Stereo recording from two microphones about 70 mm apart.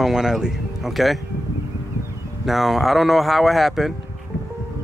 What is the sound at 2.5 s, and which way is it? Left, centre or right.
Speech, centre.